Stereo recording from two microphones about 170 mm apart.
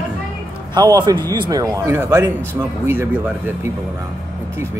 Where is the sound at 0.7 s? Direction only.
25° right (ahead or behind).